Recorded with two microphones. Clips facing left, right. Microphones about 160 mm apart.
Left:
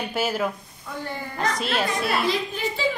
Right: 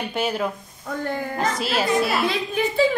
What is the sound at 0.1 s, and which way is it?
Speech, centre (ahead or behind).